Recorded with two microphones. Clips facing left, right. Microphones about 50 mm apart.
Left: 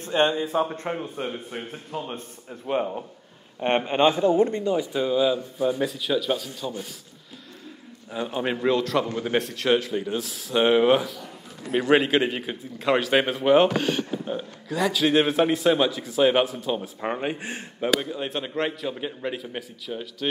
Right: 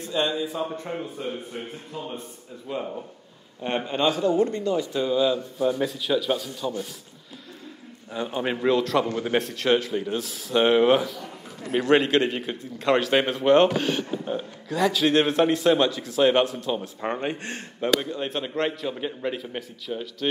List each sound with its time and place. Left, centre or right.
0.0 s speech: left
1.5 s a man's voice: left
2.1 s speech: left
3.6 s speech: left; by 6.7 s centre
8.1 s a man's voice: centre